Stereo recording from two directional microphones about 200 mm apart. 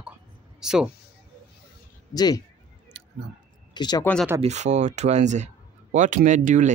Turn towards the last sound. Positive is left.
turn(degrees=-40)  # may be behind; listen again after turning